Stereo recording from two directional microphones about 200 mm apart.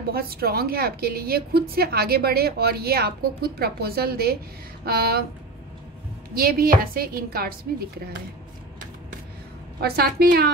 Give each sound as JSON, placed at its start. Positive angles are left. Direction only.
{"t": 0.1, "sound": "a woman's voice", "side_deg": -50}
{"t": 6.3, "sound": "a woman's voice", "side_deg": -45}
{"t": 9.8, "sound": "a woman's voice", "side_deg": -50}